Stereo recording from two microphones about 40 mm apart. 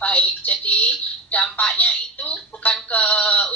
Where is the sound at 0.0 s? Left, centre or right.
Left.